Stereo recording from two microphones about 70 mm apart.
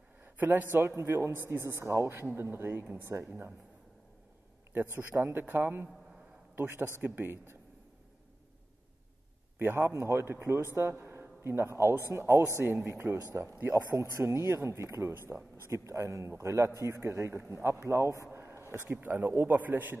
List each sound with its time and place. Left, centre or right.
0.2 s a man's voice: right
4.7 s a man's voice: right
9.6 s a man's voice: right
18.9 s a man's voice: right